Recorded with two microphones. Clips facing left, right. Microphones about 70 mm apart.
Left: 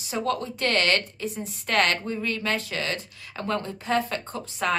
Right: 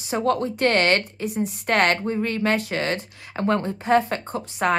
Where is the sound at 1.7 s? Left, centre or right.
Right.